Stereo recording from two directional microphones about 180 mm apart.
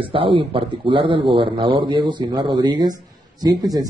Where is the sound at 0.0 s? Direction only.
30° right (ahead or behind).